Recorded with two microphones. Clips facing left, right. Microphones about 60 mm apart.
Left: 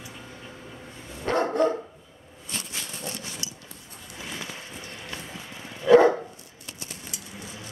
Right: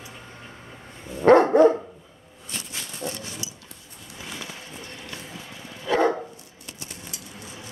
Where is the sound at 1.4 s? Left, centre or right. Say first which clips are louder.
Right 7 dB; right.